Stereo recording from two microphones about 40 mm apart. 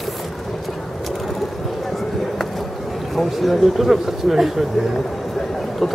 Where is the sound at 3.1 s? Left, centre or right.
Centre.